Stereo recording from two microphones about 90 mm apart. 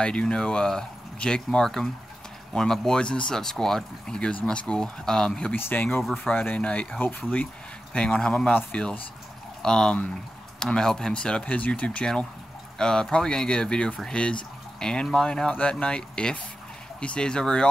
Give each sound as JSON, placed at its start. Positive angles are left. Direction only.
{"t": 0.0, "sound": "speech", "side_deg": 10}
{"t": 5.5, "sound": "speech", "side_deg": 20}